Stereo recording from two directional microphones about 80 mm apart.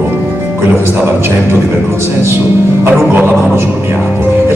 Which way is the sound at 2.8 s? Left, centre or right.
Right.